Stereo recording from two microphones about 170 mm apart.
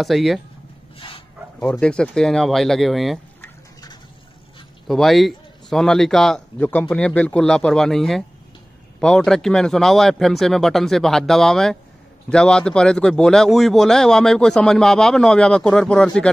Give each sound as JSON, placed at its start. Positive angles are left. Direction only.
{"t": 0.0, "sound": "a man's voice", "side_deg": 0}
{"t": 0.9, "sound": "dog", "side_deg": 30}
{"t": 1.6, "sound": "a man's voice", "side_deg": 5}
{"t": 3.3, "sound": "a sound", "side_deg": 20}
{"t": 4.8, "sound": "a man's voice", "side_deg": 0}